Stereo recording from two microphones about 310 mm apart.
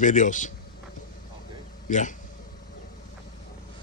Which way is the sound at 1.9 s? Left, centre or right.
Left.